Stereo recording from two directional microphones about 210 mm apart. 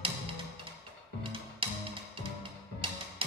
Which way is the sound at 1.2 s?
25° right (ahead or behind).